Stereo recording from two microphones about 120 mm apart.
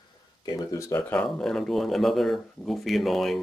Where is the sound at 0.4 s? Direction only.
30° left (ahead or behind).